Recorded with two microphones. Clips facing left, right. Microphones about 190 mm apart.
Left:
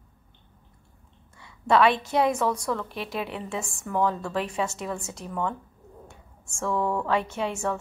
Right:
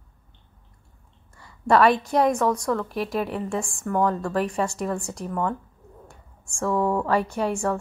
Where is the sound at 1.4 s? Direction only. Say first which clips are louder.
Right 2 dB; centre (ahead or behind).